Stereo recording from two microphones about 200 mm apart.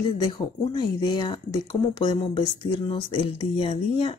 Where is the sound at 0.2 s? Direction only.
20° left (ahead or behind).